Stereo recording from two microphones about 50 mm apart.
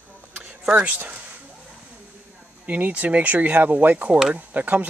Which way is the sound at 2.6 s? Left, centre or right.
Right.